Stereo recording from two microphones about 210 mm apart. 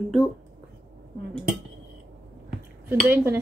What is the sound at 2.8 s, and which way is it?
Speech, 10° right (ahead or behind).